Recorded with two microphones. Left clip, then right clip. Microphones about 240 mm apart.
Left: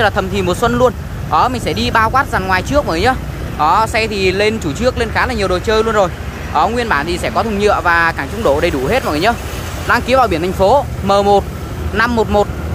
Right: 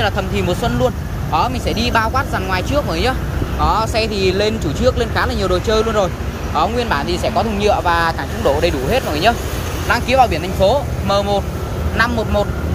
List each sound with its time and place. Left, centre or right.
0.0 s speech: centre